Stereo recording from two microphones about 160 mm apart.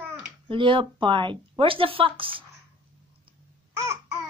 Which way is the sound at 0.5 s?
30° right (ahead or behind).